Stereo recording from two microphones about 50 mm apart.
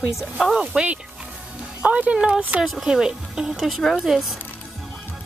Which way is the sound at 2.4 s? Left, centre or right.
Right.